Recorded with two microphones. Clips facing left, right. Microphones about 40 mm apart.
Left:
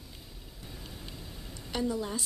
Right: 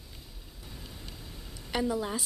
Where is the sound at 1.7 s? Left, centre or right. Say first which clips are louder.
Right 2 dB; centre.